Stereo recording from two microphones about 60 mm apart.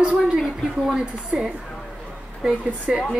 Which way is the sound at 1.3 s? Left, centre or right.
Right.